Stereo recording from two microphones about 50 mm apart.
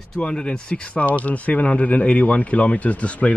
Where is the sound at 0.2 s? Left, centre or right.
Centre.